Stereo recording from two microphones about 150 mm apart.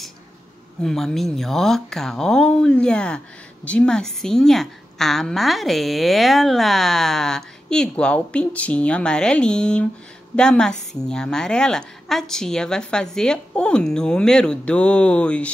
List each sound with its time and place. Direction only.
0.8 s a woman's voice: centre (ahead or behind)